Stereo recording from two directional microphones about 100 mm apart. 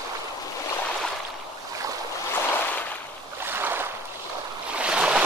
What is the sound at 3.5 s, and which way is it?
Boat, 20° right (ahead or behind).